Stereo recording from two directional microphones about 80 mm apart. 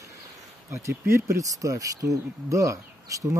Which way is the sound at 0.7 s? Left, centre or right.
Right.